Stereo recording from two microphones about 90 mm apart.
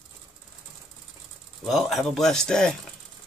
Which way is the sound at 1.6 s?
Centre (ahead or behind).